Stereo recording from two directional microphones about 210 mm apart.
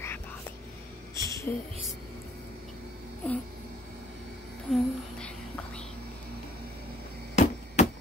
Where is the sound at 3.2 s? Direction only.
5° left (ahead or behind).